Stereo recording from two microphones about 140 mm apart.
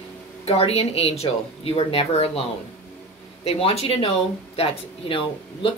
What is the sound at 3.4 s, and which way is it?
A woman's voice, 45° left (ahead or behind).